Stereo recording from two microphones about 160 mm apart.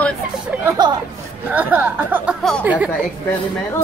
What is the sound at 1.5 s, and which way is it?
Speech, 10° right (ahead or behind).